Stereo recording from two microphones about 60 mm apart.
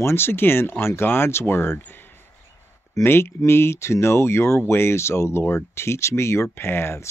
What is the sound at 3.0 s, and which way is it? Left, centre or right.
Speech, left.